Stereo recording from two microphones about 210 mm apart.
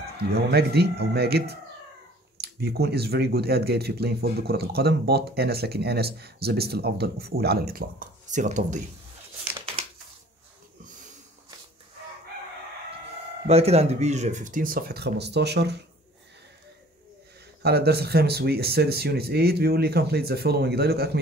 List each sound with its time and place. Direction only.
0.3 s speech: 50° right (ahead or behind)
13.5 s speech: 30° right (ahead or behind); by 15.8 s 50° right (ahead or behind)
17.6 s speech: 50° right (ahead or behind)